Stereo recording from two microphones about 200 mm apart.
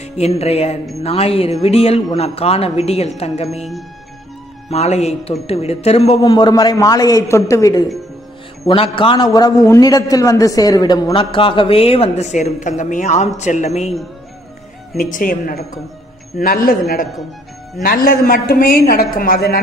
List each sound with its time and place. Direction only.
0.0 s a man's voice: 30° left (ahead or behind)
4.6 s a woman's voice: 35° left (ahead or behind)
6.2 s a man's voice: 20° left (ahead or behind)
8.6 s a man's voice: 25° left (ahead or behind)
15.0 s a woman's voice: 40° left (ahead or behind)
17.8 s a woman's voice: 45° left (ahead or behind)